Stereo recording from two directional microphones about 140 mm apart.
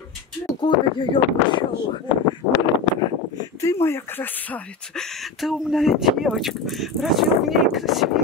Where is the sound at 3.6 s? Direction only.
20° left (ahead or behind).